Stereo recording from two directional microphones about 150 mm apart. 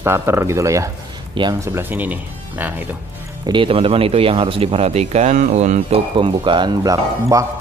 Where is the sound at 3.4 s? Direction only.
35° right (ahead or behind).